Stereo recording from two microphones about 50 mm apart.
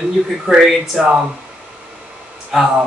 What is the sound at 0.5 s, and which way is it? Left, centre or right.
Speech, centre.